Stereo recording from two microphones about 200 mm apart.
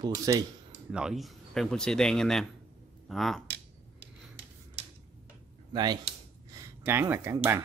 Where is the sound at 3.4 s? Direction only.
60° right (ahead or behind).